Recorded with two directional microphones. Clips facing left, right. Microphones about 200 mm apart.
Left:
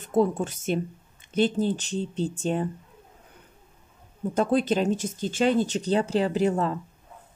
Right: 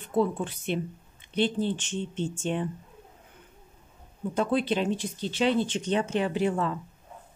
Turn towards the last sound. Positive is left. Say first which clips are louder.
# left 3 dB
turn(degrees=40)  # may be behind; listen again after turning